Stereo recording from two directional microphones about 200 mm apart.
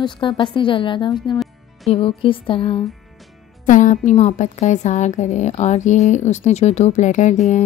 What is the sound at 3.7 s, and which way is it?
A woman's voice, 40° left (ahead or behind).